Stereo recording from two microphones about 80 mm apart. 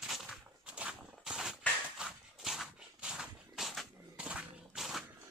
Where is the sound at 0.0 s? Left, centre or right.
Centre.